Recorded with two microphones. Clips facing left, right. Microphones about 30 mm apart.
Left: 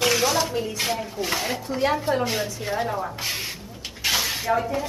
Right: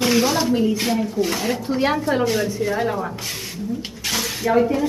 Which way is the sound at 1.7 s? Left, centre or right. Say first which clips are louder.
Right 2 dB; centre.